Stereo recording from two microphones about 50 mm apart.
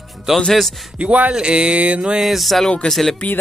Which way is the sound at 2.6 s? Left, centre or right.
Centre.